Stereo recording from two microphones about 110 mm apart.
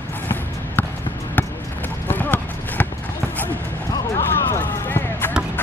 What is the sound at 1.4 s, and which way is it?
Basketball bounce, 15° left (ahead or behind).